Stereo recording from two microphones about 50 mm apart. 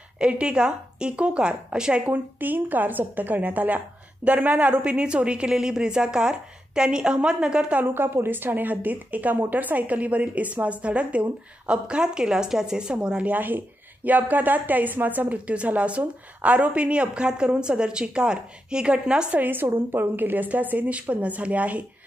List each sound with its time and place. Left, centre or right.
0.2 s a woman's voice: right
2.0 s a woman's voice: right
4.8 s a woman's voice: right
7.8 s a woman's voice: right; by 13.3 s centre
13.3 s a woman's voice: right; by 19.4 s centre
19.4 s a woman's voice: right